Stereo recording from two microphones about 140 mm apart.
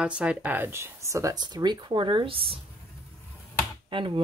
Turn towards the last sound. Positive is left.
turn(degrees=-35)  # may be behind; listen again after turning